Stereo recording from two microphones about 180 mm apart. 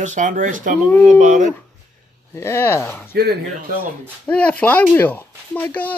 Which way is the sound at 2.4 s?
15° left (ahead or behind).